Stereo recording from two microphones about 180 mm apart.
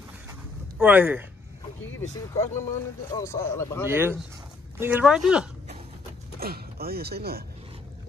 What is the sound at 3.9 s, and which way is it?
Speech, 10° right (ahead or behind).